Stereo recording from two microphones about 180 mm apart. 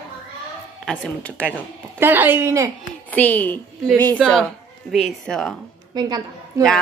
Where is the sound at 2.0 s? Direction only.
10° right (ahead or behind).